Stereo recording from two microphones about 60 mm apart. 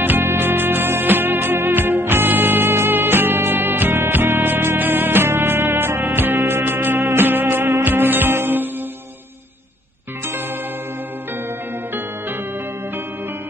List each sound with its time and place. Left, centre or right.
0.0 s music: right